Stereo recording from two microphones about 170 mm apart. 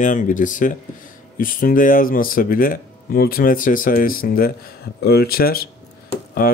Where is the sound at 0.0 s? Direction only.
50° left (ahead or behind).